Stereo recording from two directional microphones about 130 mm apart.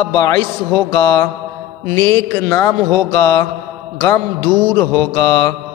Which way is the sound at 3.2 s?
25° left (ahead or behind).